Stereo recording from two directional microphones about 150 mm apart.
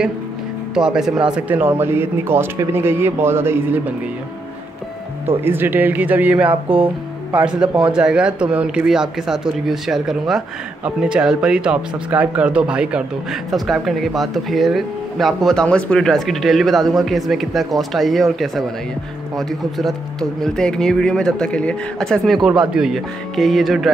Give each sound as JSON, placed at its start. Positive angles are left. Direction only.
{"t": 0.7, "sound": "speech", "side_deg": -5}
{"t": 5.4, "sound": "speech", "side_deg": -15}